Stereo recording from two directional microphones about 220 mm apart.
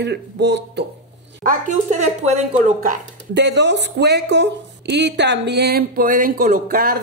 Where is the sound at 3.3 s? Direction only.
50° right (ahead or behind).